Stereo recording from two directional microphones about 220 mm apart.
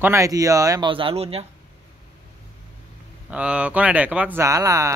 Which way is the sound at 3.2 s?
5° right (ahead or behind).